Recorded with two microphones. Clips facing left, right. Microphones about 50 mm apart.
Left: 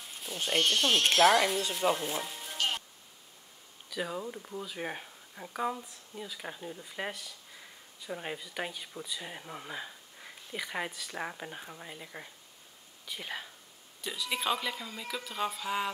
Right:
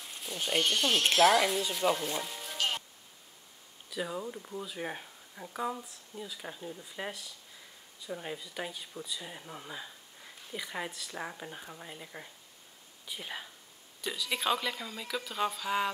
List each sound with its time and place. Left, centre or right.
0.0 s a sound: centre
0.6 s speech: centre
4.0 s speech: centre
8.1 s a woman's voice: left; by 15.9 s centre